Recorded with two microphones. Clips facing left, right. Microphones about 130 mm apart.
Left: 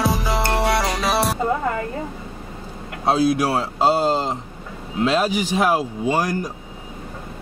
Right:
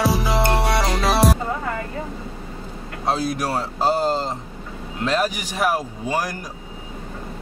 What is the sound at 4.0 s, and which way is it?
Speech, 10° left (ahead or behind).